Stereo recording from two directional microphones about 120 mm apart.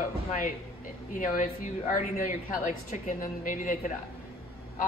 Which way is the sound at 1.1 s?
90° left.